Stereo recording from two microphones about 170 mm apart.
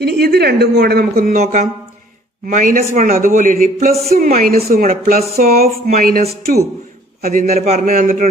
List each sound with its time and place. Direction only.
0.0 s speech: 70° right (ahead or behind)
1.4 s a man's voice: 45° right (ahead or behind)
7.5 s a man's voice: 45° right (ahead or behind)